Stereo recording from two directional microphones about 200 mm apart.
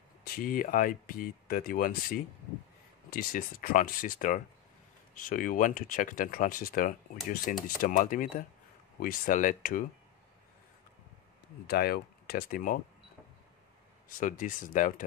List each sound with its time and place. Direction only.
0.2 s speech: 45° left (ahead or behind)
11.6 s speech: 50° left (ahead or behind)
14.0 s speech: 40° left (ahead or behind)